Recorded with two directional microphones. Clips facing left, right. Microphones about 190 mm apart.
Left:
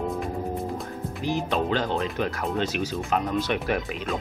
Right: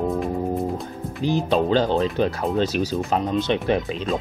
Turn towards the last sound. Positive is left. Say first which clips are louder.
# right 5 dB
turn(degrees=-25)  # may be behind; listen again after turning